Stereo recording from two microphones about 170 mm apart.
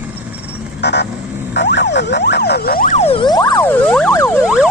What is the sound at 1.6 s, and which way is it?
Emergency vehicle, 85° left.